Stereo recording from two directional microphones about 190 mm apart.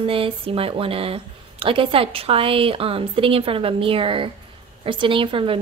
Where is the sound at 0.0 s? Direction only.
30° right (ahead or behind).